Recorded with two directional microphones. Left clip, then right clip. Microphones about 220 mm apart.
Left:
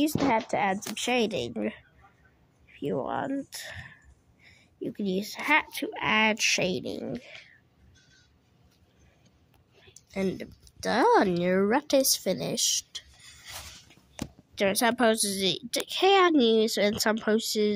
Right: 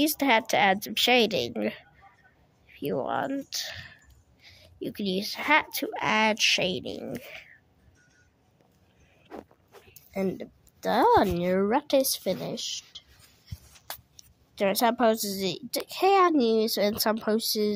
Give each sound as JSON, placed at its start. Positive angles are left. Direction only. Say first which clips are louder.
{"t": 0.0, "sound": "a woman's voice", "louder": "right 2 dB", "side_deg": -15}
{"t": 9.8, "sound": "speech", "louder": "right 1 dB", "side_deg": -5}
{"t": 14.5, "sound": "a woman's voice", "louder": "right 1 dB", "side_deg": -10}